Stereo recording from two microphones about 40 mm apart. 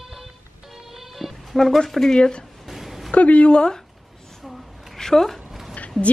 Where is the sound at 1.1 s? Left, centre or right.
Centre.